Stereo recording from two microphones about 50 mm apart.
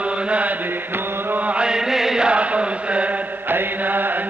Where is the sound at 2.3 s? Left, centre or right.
Right.